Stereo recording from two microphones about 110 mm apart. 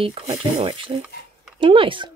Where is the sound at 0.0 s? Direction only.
60° right (ahead or behind).